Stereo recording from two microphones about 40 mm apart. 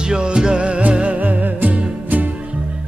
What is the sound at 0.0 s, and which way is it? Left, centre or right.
Music, right.